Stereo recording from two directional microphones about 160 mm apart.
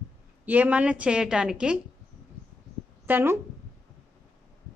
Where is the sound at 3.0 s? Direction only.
15° right (ahead or behind).